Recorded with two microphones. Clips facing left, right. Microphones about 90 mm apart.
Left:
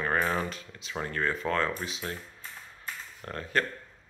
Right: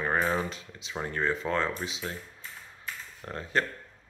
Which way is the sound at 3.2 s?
20° right (ahead or behind).